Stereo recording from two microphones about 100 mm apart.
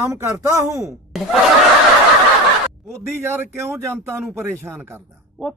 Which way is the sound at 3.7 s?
20° right (ahead or behind).